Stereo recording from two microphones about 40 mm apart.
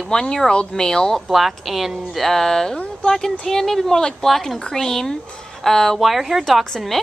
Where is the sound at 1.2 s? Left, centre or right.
Centre.